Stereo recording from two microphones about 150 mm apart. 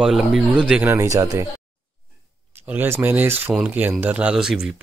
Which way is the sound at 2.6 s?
15° right (ahead or behind).